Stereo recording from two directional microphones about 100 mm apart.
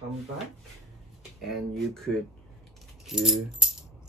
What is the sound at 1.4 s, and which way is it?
Speech, 5° left (ahead or behind).